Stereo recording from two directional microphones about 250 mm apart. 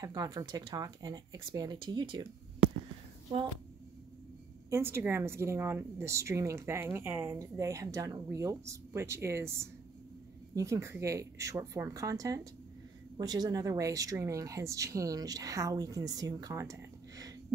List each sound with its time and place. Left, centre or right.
0.0 s a woman's voice: centre
4.6 s a woman's voice: centre
10.5 s a woman's voice: centre